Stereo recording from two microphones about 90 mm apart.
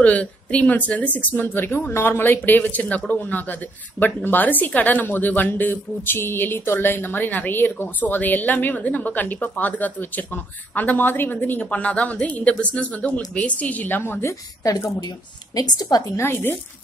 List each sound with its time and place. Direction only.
0.0 s speech: 15° left (ahead or behind)
15.0 s a woman's voice: 50° left (ahead or behind)
16.2 s speech: 25° left (ahead or behind)